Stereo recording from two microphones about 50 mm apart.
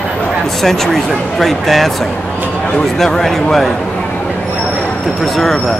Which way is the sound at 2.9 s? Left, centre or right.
Centre.